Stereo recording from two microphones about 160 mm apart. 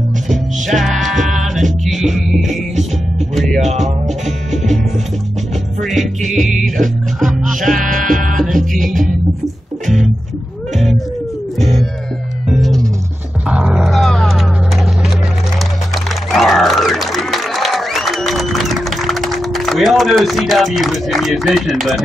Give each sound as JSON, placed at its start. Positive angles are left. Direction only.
{"t": 0.3, "sound": "music", "side_deg": 0}
{"t": 3.5, "sound": "speech", "side_deg": -45}
{"t": 5.8, "sound": "music", "side_deg": 0}
{"t": 8.1, "sound": "music", "side_deg": -55}
{"t": 12.4, "sound": "music", "side_deg": 0}
{"t": 15.9, "sound": "music", "side_deg": 0}